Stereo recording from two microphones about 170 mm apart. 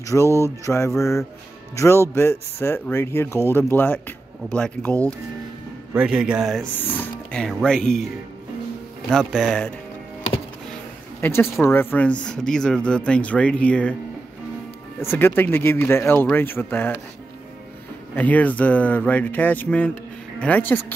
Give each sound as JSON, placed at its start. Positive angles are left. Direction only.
{"t": 0.0, "sound": "speech", "side_deg": 15}
{"t": 5.9, "sound": "speech", "side_deg": -5}
{"t": 6.8, "sound": "speech", "side_deg": 10}
{"t": 9.1, "sound": "speech", "side_deg": 0}
{"t": 11.1, "sound": "speech", "side_deg": 15}
{"t": 15.0, "sound": "speech", "side_deg": 15}
{"t": 18.1, "sound": "speech", "side_deg": 10}